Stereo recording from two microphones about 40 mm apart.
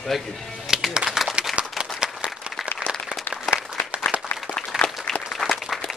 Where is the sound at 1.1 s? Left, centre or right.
Centre.